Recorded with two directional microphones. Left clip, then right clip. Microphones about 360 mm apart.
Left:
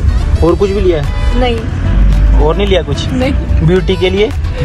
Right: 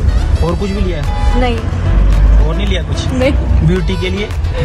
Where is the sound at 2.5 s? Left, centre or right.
Centre.